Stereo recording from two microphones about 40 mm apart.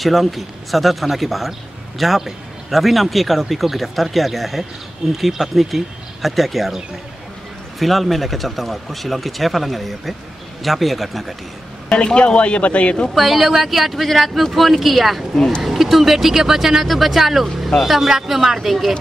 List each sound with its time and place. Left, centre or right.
0.0 s speech: centre
7.8 s speech: centre
11.9 s speech: left
13.1 s speech: centre